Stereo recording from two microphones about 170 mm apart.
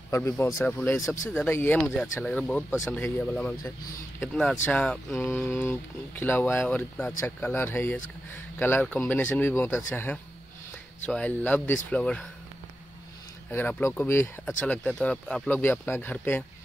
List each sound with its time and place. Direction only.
0.1 s speech: 15° left (ahead or behind)
0.7 s speech: 5° left (ahead or behind)
13.5 s speech: 10° left (ahead or behind)